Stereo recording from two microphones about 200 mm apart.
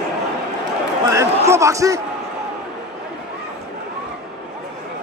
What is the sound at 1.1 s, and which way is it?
Speech, 15° right (ahead or behind).